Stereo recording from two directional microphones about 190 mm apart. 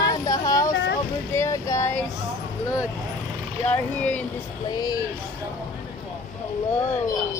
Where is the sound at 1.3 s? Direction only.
15° left (ahead or behind).